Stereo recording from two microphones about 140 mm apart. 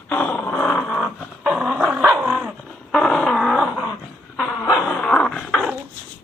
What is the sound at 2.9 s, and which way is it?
Dog, 5° left (ahead or behind).